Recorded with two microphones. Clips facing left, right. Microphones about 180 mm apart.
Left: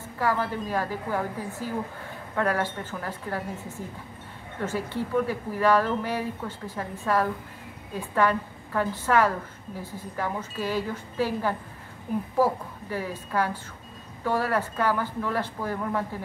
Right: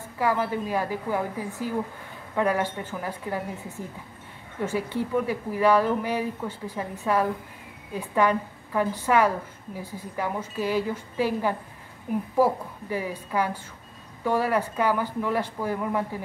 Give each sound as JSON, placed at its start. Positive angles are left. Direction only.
{"t": 0.2, "sound": "speech", "side_deg": -10}
{"t": 4.6, "sound": "speech", "side_deg": -10}